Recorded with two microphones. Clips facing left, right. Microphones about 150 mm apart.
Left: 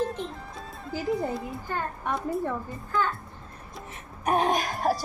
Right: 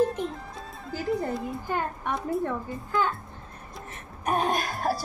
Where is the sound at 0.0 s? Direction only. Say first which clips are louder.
Right 4 dB; 10° right (ahead or behind).